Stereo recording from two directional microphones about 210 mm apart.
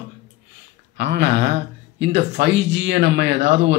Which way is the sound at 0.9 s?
55° right (ahead or behind).